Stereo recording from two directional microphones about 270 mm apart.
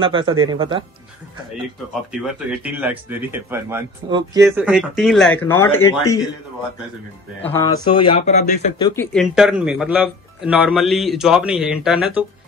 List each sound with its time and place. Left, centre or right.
0.0 s speech: centre
2.6 s speech: centre
7.4 s speech: centre
9.1 s speech: centre